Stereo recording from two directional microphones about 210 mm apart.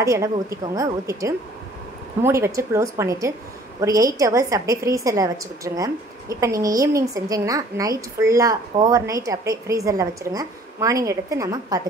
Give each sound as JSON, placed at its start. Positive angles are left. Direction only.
{"t": 0.0, "sound": "a woman's voice", "side_deg": -15}